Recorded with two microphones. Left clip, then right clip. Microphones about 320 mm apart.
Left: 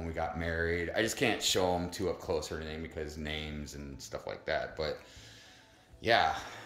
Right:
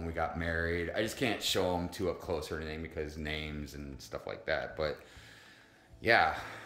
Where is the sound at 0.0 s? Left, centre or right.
Centre.